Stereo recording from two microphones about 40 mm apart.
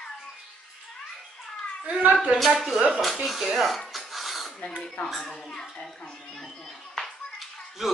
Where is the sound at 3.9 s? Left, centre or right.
Centre.